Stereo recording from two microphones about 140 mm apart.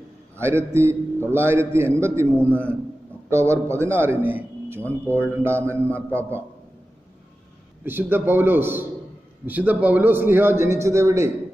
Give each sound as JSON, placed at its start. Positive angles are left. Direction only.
{"t": 0.4, "sound": "a man's voice", "side_deg": -20}
{"t": 2.3, "sound": "a man's voice", "side_deg": 10}
{"t": 3.3, "sound": "a man's voice", "side_deg": -20}
{"t": 7.8, "sound": "a man's voice", "side_deg": -15}